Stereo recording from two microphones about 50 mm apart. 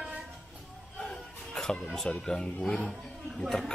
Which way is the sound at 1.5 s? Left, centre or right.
Centre.